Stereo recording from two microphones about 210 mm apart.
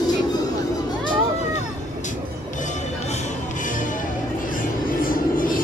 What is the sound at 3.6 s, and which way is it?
Music, 40° left (ahead or behind).